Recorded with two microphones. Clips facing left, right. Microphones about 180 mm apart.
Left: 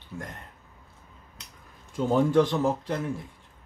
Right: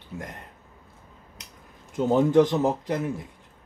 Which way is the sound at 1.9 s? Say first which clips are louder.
Right 2 dB; 20° right (ahead or behind).